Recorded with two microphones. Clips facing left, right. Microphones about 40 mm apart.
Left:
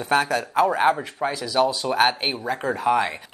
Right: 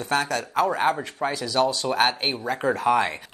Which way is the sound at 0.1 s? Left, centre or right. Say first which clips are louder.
Left 3 dB; centre.